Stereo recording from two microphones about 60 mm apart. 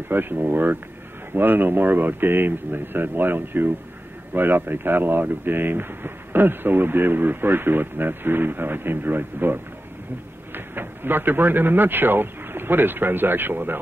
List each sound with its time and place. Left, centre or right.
0.1 s speech: right